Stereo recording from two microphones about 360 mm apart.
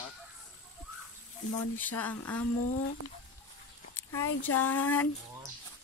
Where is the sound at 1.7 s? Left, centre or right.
Centre.